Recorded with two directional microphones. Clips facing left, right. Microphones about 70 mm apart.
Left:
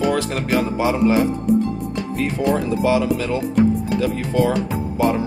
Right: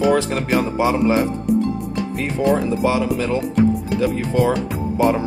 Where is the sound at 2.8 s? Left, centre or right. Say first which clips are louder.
Left 2 dB; right.